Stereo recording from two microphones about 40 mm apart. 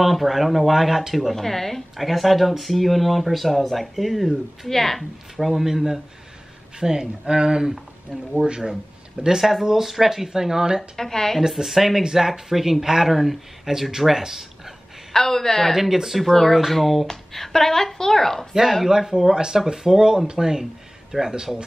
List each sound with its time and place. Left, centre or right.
0.0 s speech: centre
1.3 s speech: centre
5.5 s speech: centre
9.4 s speech: centre
10.8 s speech: centre
11.4 s speech: centre
15.1 s speech: centre
15.7 s speech: centre
16.2 s speech: centre
18.5 s speech: centre